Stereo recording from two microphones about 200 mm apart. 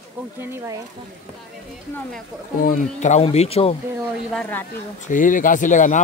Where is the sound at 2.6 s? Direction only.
40° left (ahead or behind).